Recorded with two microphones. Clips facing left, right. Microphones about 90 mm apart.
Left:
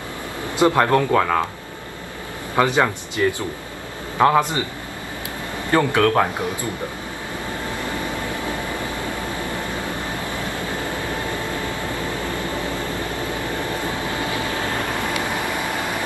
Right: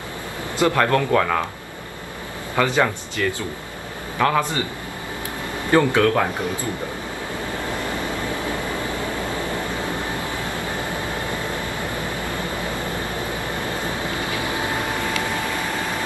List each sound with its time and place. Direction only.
0.6 s speech: 20° left (ahead or behind)
2.5 s speech: 20° left (ahead or behind)
5.8 s speech: 15° left (ahead or behind)
14.4 s boat: 20° right (ahead or behind)